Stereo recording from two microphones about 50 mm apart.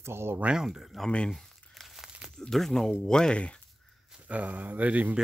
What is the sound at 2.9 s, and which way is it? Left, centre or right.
Speech, centre.